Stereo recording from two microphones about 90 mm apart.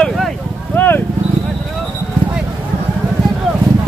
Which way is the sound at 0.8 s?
20° left (ahead or behind).